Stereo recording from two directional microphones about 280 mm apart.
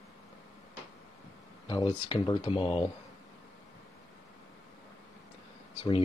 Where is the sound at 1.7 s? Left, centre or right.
Centre.